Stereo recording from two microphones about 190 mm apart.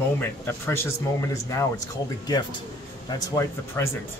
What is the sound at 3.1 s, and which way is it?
Speech, 15° left (ahead or behind).